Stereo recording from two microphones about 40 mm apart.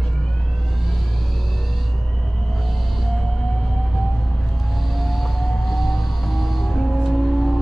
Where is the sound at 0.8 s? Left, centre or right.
Centre.